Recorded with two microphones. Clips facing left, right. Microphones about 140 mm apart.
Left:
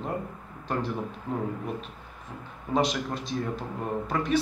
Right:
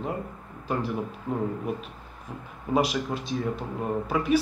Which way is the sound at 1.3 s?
10° right (ahead or behind).